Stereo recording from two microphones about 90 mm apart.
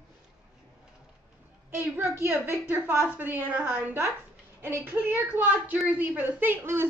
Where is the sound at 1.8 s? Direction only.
25° right (ahead or behind).